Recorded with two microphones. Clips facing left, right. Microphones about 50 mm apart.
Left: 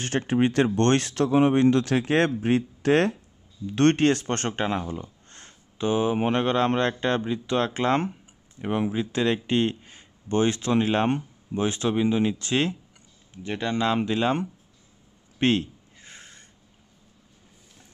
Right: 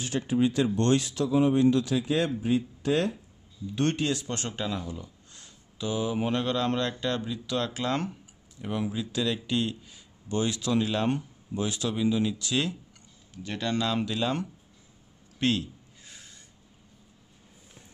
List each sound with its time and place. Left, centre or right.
0.0 s speech: left
13.3 s speech: left
15.3 s a sound: left